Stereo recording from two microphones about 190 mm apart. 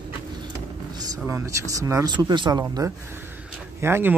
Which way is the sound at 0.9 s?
20° right (ahead or behind).